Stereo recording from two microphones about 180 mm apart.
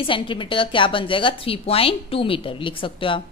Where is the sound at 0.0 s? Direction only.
30° left (ahead or behind).